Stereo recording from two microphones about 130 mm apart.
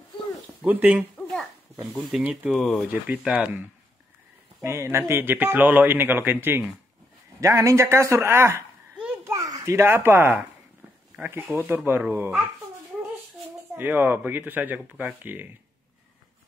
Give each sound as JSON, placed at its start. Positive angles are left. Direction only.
{"t": 0.6, "sound": "speech", "side_deg": -10}
{"t": 2.0, "sound": "speech", "side_deg": -10}
{"t": 2.5, "sound": "speech", "side_deg": 0}
{"t": 2.9, "sound": "speech", "side_deg": -10}
{"t": 4.6, "sound": "speech", "side_deg": -20}
{"t": 13.7, "sound": "speech", "side_deg": -15}